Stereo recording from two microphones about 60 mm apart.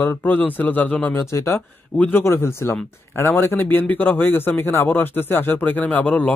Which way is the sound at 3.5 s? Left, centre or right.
Left.